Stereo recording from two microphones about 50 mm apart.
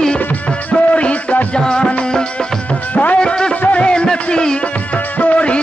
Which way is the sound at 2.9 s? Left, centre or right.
Left.